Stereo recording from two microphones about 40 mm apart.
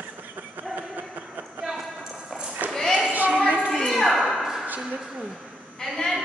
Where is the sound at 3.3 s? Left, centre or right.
Right.